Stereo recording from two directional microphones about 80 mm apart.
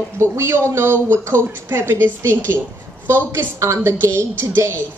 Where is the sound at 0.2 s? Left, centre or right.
Right.